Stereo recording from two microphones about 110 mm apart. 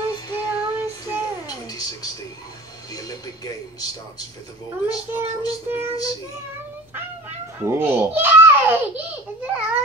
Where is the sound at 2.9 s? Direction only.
35° left (ahead or behind).